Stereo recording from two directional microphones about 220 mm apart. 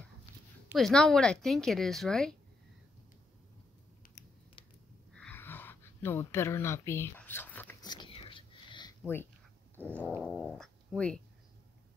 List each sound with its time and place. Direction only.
0.7 s a woman's voice: centre (ahead or behind)
5.1 s a sound: 5° left (ahead or behind)
7.8 s whispering: 20° left (ahead or behind)
10.0 s a woman's voice: 5° right (ahead or behind)